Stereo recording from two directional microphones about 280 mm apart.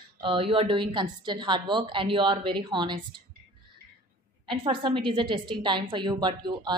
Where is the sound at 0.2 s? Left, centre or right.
Centre.